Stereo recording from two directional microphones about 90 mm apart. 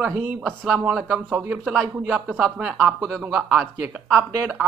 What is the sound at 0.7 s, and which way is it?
Speech, 15° right (ahead or behind).